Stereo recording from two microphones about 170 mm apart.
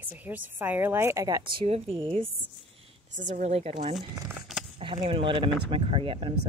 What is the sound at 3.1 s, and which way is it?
Speech, 45° right (ahead or behind).